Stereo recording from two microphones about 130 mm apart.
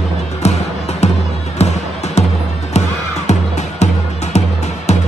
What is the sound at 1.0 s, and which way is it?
Music, 60° left (ahead or behind).